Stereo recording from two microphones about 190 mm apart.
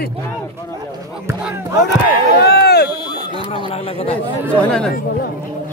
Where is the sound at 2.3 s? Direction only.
60° left (ahead or behind).